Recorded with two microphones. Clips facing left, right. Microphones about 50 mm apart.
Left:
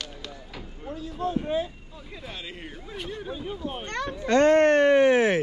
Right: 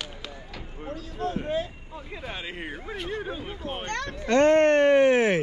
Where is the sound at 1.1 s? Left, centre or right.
Right.